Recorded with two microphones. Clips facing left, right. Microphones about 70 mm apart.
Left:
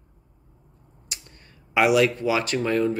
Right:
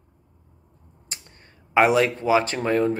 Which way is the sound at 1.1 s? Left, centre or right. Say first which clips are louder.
Even; right.